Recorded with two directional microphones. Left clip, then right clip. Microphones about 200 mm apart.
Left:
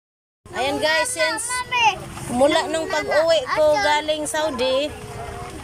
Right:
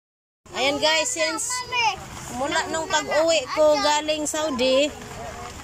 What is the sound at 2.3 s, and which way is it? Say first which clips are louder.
Speech: left 7 dB; 20° left (ahead or behind).